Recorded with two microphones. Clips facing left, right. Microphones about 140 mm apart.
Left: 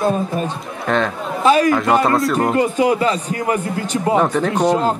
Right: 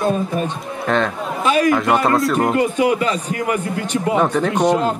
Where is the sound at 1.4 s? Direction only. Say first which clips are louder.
Left 3 dB; 35° left (ahead or behind).